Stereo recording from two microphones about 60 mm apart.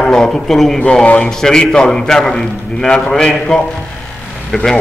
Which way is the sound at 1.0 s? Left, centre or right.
Left.